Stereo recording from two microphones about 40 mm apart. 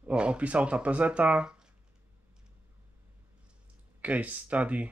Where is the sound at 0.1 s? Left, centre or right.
Right.